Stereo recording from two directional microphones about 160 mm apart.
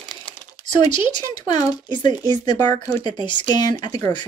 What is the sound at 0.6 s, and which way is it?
Speech, 30° left (ahead or behind).